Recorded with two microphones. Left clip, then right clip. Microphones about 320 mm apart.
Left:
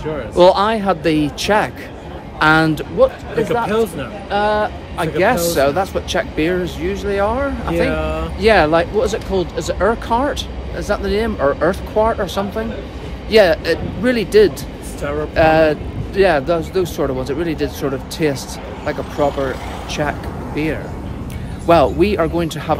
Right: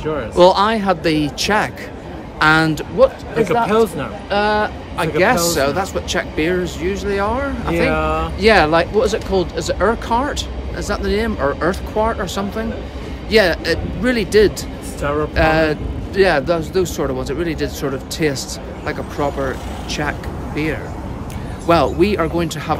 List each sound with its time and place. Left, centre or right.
0.3 s speech: centre
3.5 s speech: centre
4.3 s speech: centre
7.9 s speech: centre
8.4 s speech: centre
15.0 s speech: centre
15.3 s speech: centre